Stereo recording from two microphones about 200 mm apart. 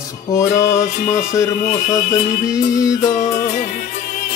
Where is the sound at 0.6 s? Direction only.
15° left (ahead or behind).